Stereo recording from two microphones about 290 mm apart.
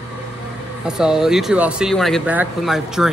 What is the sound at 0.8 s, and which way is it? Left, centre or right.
Speech, centre.